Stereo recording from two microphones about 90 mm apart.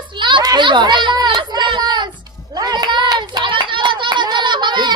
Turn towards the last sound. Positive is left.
turn(degrees=-55)  # may be behind; listen again after turning